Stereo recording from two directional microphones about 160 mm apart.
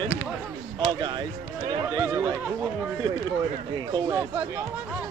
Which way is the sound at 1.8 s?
20° right (ahead or behind).